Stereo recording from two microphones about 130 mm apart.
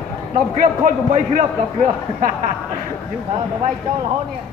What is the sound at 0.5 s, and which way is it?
Speech, 80° right.